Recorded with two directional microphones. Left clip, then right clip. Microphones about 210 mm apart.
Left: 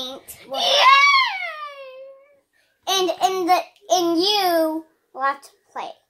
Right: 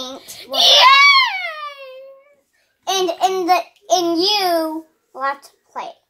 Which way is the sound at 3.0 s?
30° left (ahead or behind).